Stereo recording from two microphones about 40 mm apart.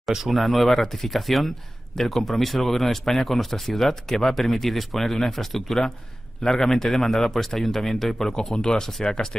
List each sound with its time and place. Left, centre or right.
0.1 s speech: centre
0.6 s a man's voice: centre